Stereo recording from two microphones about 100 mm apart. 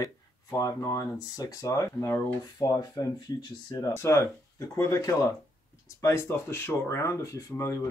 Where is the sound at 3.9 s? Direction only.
25° left (ahead or behind).